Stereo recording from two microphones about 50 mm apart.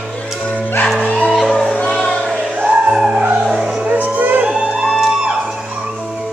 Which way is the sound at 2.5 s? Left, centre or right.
Right.